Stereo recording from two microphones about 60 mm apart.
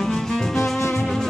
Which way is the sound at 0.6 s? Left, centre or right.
Left.